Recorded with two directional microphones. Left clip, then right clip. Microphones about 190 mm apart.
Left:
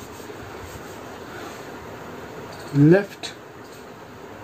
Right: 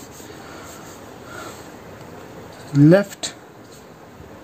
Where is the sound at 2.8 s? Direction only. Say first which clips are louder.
Right 3 dB; 55° right (ahead or behind).